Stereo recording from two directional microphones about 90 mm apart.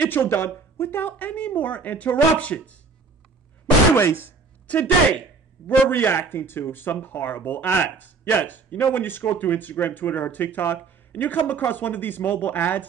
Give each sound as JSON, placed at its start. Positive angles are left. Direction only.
{"t": 0.0, "sound": "speech", "side_deg": 25}
{"t": 3.9, "sound": "speech", "side_deg": 30}
{"t": 4.6, "sound": "speech", "side_deg": 15}